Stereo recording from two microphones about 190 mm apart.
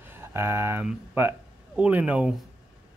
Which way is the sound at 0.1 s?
10° right (ahead or behind).